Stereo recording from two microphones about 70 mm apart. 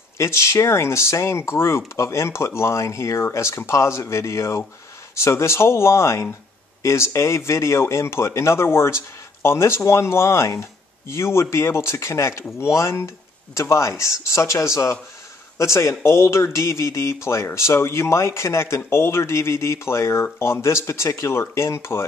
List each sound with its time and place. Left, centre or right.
0.2 s speech: left